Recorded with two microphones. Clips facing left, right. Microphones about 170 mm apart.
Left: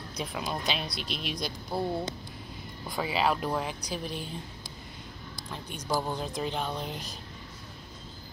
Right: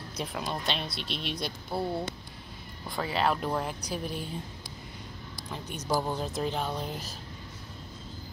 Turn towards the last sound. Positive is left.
turn(degrees=-5)  # may be behind; listen again after turning